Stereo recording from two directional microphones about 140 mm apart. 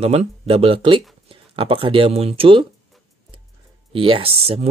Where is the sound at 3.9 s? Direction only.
40° right (ahead or behind).